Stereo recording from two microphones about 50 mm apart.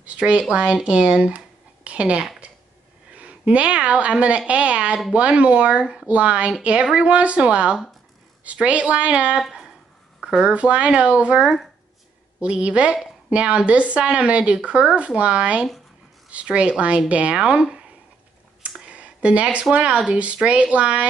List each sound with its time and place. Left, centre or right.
0.0 s a woman's voice: right
10.2 s speech: centre
10.5 s speech: right
11.4 s speech: centre
12.4 s a woman's voice: right
18.9 s a sound: right
19.7 s speech: right